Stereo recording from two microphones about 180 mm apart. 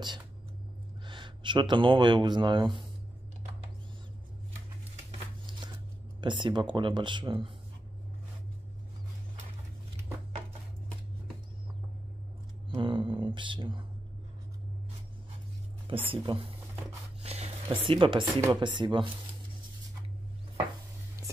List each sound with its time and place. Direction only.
1.0 s speech: 25° right (ahead or behind)
5.5 s shuffling cards: 25° right (ahead or behind)
6.2 s speech: 25° right (ahead or behind)
12.6 s a sound: 30° right (ahead or behind)
16.1 s speech: 30° right (ahead or behind)
17.2 s music: 35° right (ahead or behind)
18.4 s speech: 25° right (ahead or behind)